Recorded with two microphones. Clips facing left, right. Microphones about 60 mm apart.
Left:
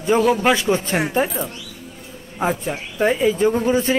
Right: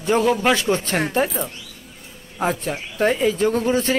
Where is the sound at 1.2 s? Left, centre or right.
Centre.